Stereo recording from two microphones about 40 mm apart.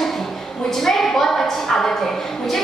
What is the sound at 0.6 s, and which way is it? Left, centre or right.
A woman's voice, centre.